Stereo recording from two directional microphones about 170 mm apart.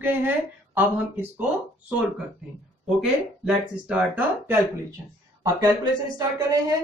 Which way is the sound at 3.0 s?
5° right (ahead or behind).